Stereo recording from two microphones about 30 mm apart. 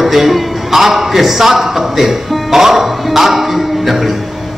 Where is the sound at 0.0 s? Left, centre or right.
Centre.